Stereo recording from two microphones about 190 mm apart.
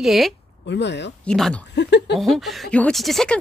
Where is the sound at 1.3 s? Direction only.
5° left (ahead or behind).